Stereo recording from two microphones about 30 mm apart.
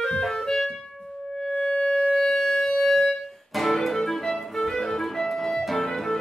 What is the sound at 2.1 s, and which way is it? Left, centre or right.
Wind instrument, centre.